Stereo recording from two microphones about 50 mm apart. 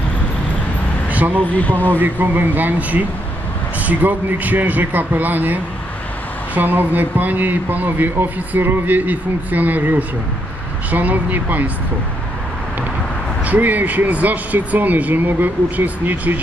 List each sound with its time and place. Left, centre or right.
1.1 s a sound: right
1.4 s speech: left
2.0 s speech: right
13.5 s speech: right